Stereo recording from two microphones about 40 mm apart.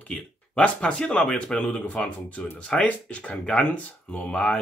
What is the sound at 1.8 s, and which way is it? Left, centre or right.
Speech, left.